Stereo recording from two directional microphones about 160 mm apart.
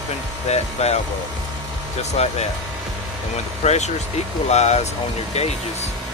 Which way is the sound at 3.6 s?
45° left (ahead or behind).